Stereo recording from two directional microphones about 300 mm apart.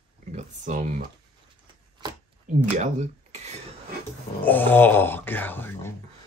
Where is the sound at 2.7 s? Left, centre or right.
Right.